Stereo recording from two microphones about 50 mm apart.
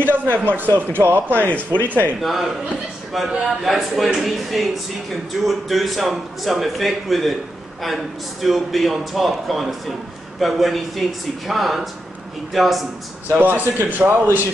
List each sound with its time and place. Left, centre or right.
0.0 s a sound: right
0.6 s speech: right
3.1 s a man's voice: centre
13.4 s a man's voice: right